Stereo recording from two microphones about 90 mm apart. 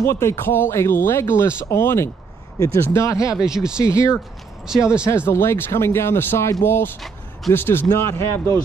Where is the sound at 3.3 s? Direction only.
5° right (ahead or behind).